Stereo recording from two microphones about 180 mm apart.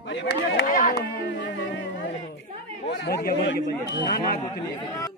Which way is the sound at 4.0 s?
50° left (ahead or behind).